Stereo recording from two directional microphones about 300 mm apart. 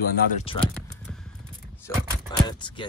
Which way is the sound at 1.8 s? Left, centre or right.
Centre.